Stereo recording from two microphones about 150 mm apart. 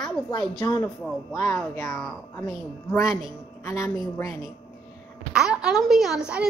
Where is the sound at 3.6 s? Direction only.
20° left (ahead or behind).